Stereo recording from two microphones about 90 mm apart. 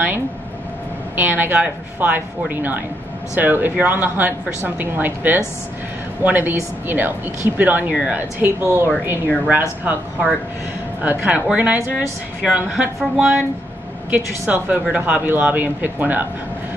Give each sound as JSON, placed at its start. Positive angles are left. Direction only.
{"t": 1.1, "sound": "speech", "side_deg": -20}
{"t": 14.5, "sound": "speech", "side_deg": -15}